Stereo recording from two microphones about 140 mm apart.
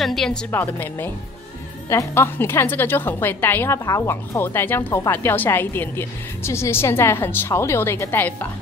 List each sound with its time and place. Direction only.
0.0 s a woman's voice: centre (ahead or behind)
0.5 s a woman's voice: 15° left (ahead or behind)